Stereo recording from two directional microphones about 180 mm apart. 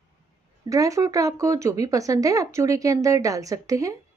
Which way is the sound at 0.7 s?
15° right (ahead or behind).